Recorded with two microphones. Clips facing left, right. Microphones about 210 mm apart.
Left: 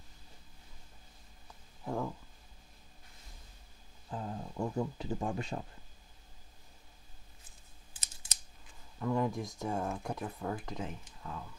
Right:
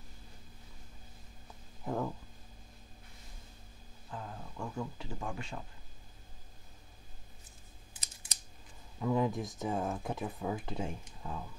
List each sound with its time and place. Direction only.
1.9 s speech: centre (ahead or behind)
4.1 s speech: 25° left (ahead or behind)
9.0 s speech: 5° right (ahead or behind)